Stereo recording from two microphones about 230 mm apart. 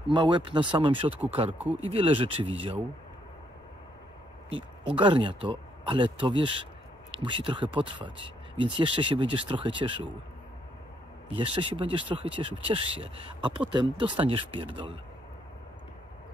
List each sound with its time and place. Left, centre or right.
0.1 s speech: right
4.5 s speech: right
11.3 s speech: right